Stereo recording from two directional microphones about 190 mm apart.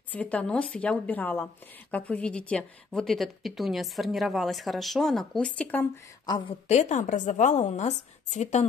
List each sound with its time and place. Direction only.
0.1 s a woman's voice: 5° left (ahead or behind)
6.2 s a woman's voice: 25° left (ahead or behind)